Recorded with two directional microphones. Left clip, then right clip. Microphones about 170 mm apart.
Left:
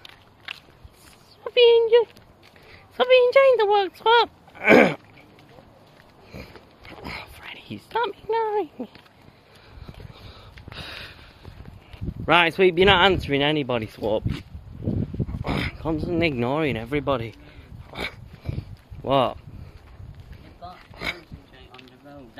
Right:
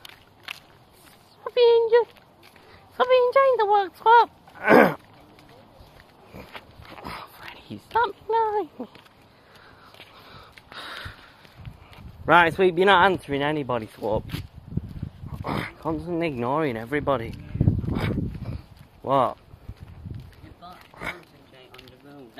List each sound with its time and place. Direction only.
1.4 s a sound: 20° left (ahead or behind)
3.0 s speech: 25° left (ahead or behind)
7.0 s a sound: 15° left (ahead or behind)
10.2 s sniff: 5° right (ahead or behind)
10.8 s sniff: 5° left (ahead or behind)
12.3 s speech: 5° left (ahead or behind)
13.2 s speech: 25° left (ahead or behind)
15.4 s speech: 15° left (ahead or behind)
16.5 s speech: 10° left (ahead or behind)
17.9 s a sound: 10° left (ahead or behind)
19.0 s speech: 15° left (ahead or behind)
20.9 s a sound: 15° left (ahead or behind)